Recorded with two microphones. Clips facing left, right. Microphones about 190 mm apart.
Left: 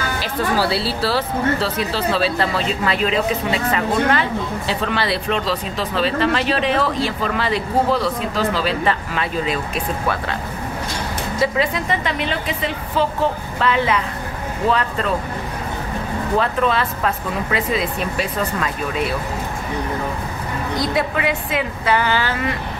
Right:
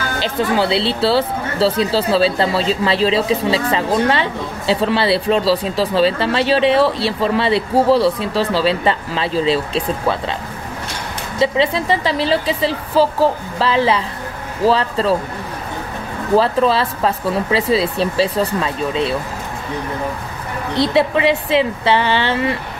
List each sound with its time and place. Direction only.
0.2 s speech: 25° right (ahead or behind)
11.3 s speech: 25° right (ahead or behind)
16.3 s speech: 30° right (ahead or behind)
20.7 s speech: 30° right (ahead or behind)